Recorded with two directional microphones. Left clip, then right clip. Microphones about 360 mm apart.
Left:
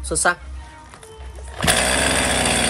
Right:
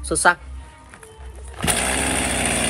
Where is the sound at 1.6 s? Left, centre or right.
Centre.